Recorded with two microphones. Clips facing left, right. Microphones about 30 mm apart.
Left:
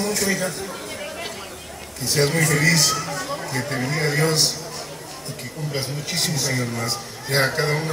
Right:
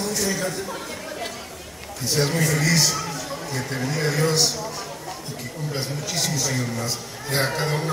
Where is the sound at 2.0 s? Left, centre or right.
Left.